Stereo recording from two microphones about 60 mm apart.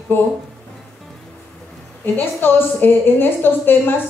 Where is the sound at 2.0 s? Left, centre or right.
Left.